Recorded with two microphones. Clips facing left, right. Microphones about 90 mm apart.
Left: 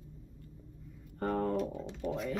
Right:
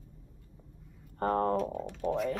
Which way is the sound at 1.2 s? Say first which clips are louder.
Right 4 dB; 45° right (ahead or behind).